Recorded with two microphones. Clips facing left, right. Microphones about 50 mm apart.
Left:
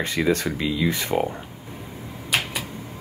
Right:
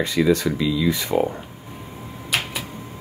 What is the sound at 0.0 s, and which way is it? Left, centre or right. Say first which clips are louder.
Speech: right 3 dB; left.